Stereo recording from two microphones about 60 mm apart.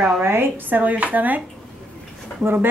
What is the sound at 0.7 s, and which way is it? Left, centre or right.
Speech, right.